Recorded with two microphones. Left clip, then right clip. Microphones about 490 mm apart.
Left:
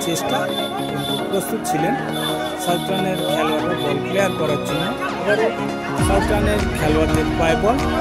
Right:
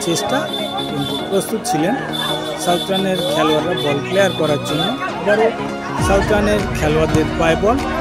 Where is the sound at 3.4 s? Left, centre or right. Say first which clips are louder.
Right 4 dB; left.